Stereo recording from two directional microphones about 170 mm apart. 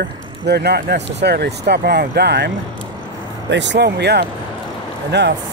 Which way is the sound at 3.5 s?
90° right.